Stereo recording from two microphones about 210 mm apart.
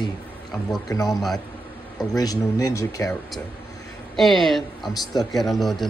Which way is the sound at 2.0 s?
20° left (ahead or behind).